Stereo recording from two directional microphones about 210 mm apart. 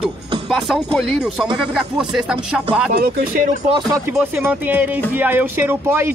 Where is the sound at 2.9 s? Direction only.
45° right (ahead or behind).